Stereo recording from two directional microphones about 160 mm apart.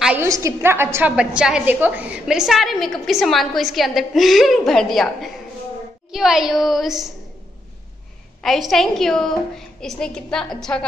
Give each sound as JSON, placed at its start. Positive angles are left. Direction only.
{"t": 0.0, "sound": "a woman's voice", "side_deg": -10}
{"t": 8.4, "sound": "a woman's voice", "side_deg": 0}